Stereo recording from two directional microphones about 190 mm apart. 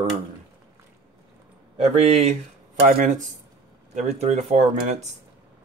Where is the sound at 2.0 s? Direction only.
35° right (ahead or behind).